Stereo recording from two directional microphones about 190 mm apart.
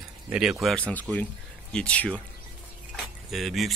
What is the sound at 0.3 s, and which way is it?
Speech, 5° right (ahead or behind).